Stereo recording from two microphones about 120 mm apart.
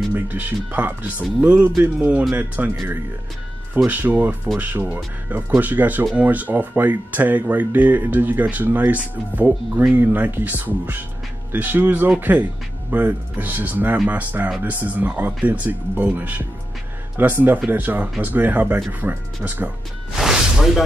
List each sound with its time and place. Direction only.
0.1 s speech: 15° right (ahead or behind)
3.7 s speech: 15° right (ahead or behind)
20.2 s music: 5° right (ahead or behind)